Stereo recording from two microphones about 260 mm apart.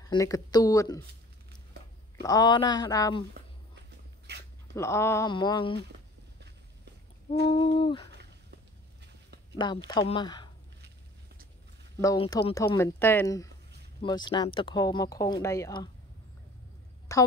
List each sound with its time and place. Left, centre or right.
0.0 s speech: centre
2.2 s speech: centre
4.3 s dog: right
4.7 s speech: centre
7.5 s speech: centre
8.1 s a sound: right
9.6 s speech: centre
12.0 s speech: centre
17.1 s speech: centre